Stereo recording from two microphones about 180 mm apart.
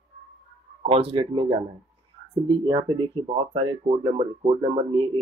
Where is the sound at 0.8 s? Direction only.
30° right (ahead or behind).